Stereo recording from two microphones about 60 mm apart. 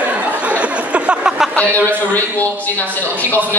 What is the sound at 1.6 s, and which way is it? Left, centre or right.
Speech, left.